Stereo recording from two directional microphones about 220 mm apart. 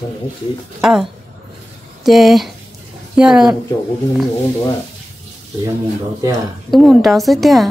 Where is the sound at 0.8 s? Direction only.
Centre (ahead or behind).